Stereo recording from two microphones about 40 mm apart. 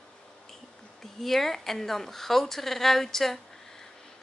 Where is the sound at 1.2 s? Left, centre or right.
Centre.